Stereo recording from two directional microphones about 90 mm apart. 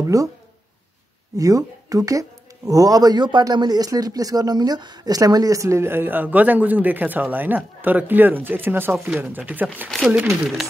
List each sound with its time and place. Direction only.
0.0 s speech: 40° right (ahead or behind)
1.3 s speech: 40° right (ahead or behind); by 9.7 s 20° right (ahead or behind)
9.8 s speech: 5° left (ahead or behind)